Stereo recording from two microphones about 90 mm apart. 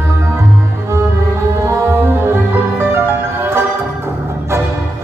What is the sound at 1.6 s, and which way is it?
Music, 30° right (ahead or behind).